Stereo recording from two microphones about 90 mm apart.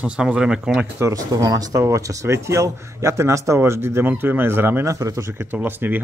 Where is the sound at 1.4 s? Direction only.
45° right (ahead or behind); by 5.0 s 25° right (ahead or behind).